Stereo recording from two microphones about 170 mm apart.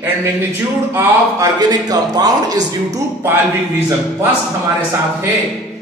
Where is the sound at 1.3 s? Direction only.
20° right (ahead or behind).